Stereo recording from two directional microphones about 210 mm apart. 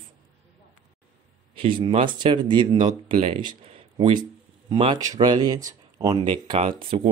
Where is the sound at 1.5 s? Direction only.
25° right (ahead or behind).